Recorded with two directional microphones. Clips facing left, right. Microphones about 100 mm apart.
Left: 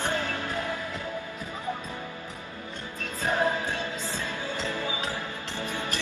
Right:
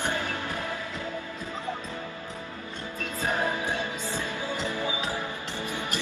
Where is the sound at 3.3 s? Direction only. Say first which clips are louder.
Left 3 dB; 15° right (ahead or behind).